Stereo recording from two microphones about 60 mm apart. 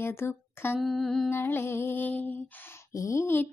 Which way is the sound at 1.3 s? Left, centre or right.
Left.